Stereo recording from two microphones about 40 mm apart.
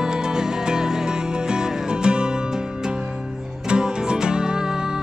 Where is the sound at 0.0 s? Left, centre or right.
Centre.